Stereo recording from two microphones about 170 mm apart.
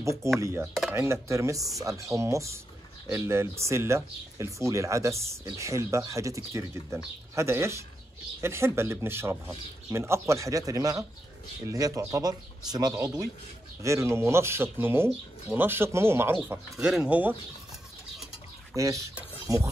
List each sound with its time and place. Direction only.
0.0 s speech: 15° right (ahead or behind)
18.8 s speech: 20° right (ahead or behind)
19.4 s mechanisms: 15° right (ahead or behind)